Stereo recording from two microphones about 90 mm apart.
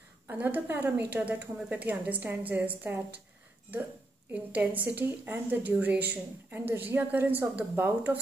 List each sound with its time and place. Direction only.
0.3 s a woman's voice: 20° right (ahead or behind)
4.3 s a woman's voice: 20° right (ahead or behind)